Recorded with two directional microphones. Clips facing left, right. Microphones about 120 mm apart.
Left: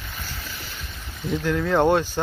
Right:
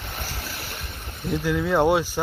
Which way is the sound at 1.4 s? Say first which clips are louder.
Left 1 dB; 10° right (ahead or behind).